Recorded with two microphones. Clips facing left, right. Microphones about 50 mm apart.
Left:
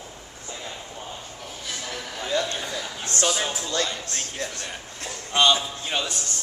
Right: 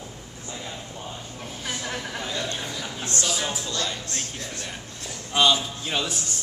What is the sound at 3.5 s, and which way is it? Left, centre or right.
Speech, left.